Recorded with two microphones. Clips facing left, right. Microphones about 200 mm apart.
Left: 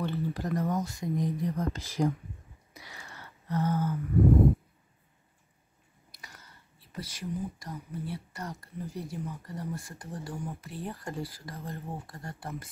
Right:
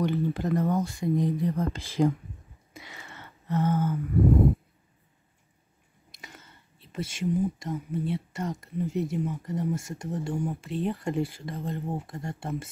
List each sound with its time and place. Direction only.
0.0 s speech: 20° right (ahead or behind)
2.7 s a sound: 25° right (ahead or behind)
6.1 s speech: 25° right (ahead or behind)